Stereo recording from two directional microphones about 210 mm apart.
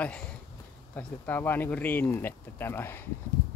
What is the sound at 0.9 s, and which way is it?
Speech, 10° left (ahead or behind).